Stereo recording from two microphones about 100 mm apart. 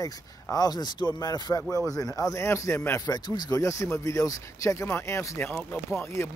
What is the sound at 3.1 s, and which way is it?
Speech, 40° left (ahead or behind).